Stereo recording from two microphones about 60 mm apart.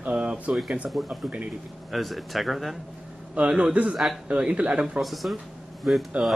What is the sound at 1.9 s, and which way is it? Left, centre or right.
Speech, centre.